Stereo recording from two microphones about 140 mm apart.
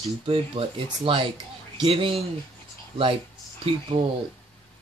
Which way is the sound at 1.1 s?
40° right (ahead or behind).